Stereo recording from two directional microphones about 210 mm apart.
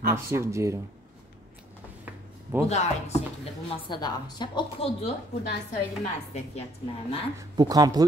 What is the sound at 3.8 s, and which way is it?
A woman's voice, 20° left (ahead or behind).